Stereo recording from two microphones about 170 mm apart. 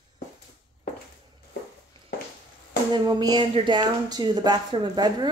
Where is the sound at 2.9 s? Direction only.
25° right (ahead or behind).